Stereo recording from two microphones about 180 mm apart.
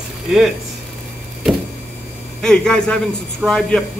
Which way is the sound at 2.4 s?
5° left (ahead or behind).